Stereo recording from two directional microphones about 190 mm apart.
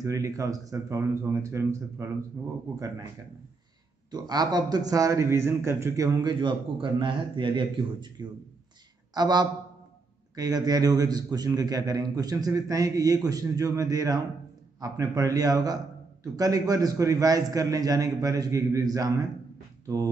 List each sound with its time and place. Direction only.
0.0 s speech: 15° right (ahead or behind)
4.1 s a man's voice: 20° right (ahead or behind)